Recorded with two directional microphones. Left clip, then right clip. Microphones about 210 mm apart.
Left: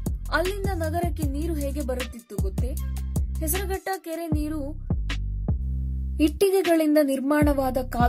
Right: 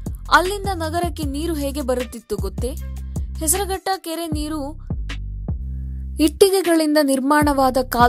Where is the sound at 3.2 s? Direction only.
Centre (ahead or behind).